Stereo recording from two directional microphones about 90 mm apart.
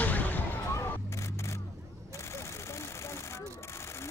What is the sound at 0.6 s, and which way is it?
Vehicle, 25° left (ahead or behind).